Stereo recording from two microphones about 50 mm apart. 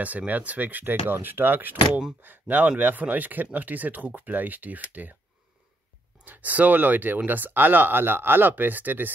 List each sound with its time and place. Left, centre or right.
0.0 s speech: right
6.2 s speech: right